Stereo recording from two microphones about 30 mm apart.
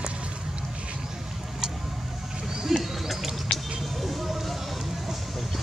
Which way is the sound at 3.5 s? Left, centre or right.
Left.